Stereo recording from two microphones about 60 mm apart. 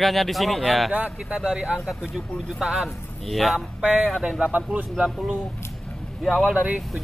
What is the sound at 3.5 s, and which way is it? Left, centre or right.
Speech, centre.